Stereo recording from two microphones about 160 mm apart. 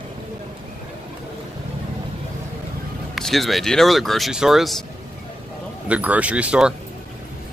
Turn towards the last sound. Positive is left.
turn(degrees=-5)  # may be behind; listen again after turning